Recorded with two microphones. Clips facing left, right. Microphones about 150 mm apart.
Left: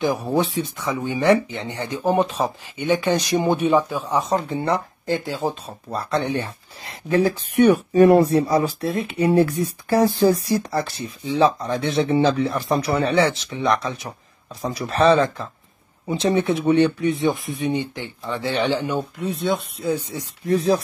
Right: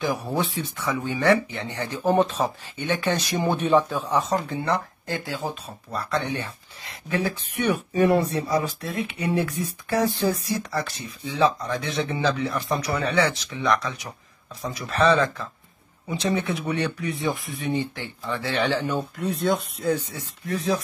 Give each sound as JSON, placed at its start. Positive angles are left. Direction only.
{"t": 0.0, "sound": "speech", "side_deg": 20}
{"t": 4.4, "sound": "speech", "side_deg": 30}
{"t": 8.3, "sound": "speech", "side_deg": 30}
{"t": 19.1, "sound": "speech", "side_deg": 0}
{"t": 19.9, "sound": "speech", "side_deg": 10}
{"t": 20.4, "sound": "speech", "side_deg": 30}